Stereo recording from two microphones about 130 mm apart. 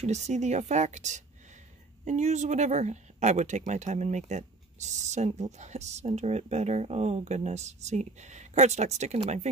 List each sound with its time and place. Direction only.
0.0 s speech: 60° right (ahead or behind)